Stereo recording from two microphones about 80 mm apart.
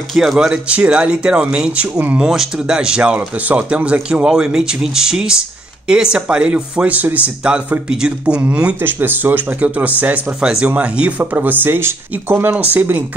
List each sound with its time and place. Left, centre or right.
0.1 s speech: centre
2.2 s speech: centre; by 13.0 s right